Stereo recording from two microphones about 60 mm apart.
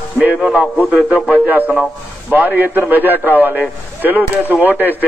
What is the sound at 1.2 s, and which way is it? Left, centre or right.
A man's voice, right.